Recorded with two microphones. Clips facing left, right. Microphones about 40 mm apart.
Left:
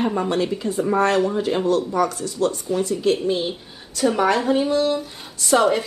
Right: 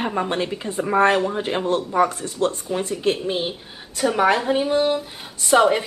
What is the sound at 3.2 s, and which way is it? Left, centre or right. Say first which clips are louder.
A woman's voice: left 2 dB; centre.